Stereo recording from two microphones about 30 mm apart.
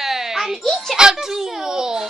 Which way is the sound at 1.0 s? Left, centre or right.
Centre.